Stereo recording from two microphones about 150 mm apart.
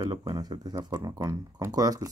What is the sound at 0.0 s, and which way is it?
Speech, 25° right (ahead or behind).